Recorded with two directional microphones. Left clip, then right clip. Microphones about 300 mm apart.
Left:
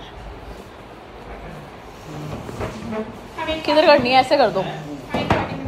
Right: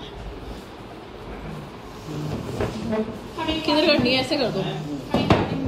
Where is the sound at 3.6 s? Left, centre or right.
Centre.